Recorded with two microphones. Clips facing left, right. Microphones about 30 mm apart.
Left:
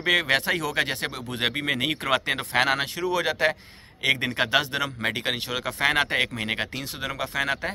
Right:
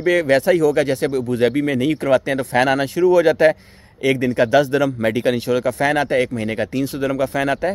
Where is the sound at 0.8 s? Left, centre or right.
Left.